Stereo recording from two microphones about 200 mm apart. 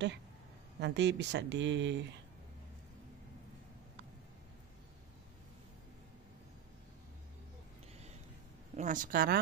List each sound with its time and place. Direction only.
0.7 s speech: 60° right (ahead or behind)
8.7 s speech: 40° right (ahead or behind)